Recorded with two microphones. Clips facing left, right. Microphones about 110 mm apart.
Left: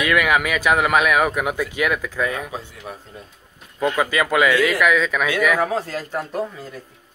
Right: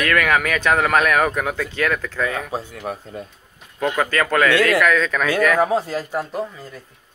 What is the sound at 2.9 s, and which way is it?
Speech, 60° right (ahead or behind).